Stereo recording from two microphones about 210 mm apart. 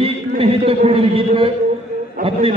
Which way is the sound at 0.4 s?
25° right (ahead or behind).